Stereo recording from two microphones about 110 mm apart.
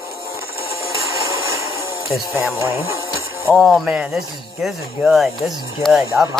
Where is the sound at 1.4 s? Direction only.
25° right (ahead or behind).